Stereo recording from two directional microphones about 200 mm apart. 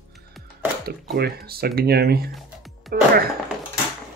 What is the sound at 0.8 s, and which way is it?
Speech, 50° right (ahead or behind).